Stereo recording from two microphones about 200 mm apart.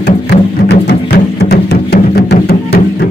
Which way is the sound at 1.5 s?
55° left (ahead or behind).